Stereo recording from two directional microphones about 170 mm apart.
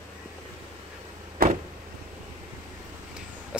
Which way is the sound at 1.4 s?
60° right (ahead or behind).